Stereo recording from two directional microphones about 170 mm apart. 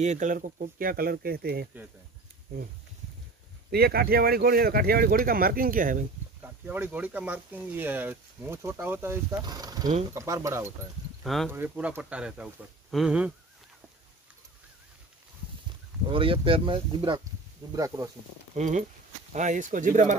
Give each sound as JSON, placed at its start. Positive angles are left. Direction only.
{"t": 0.0, "sound": "speech", "side_deg": -45}
{"t": 3.7, "sound": "speech", "side_deg": -65}
{"t": 6.4, "sound": "speech", "side_deg": -10}
{"t": 9.4, "sound": "speech", "side_deg": -25}
{"t": 11.2, "sound": "speech", "side_deg": 0}
{"t": 11.5, "sound": "speech", "side_deg": -10}
{"t": 16.1, "sound": "speech", "side_deg": -30}
{"t": 17.7, "sound": "speech", "side_deg": -20}
{"t": 18.5, "sound": "speech", "side_deg": -45}